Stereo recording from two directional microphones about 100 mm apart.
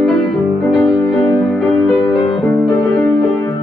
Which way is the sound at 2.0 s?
50° left (ahead or behind).